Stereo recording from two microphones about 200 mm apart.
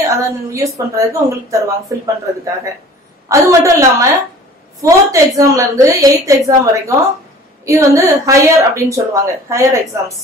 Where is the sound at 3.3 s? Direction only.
15° right (ahead or behind).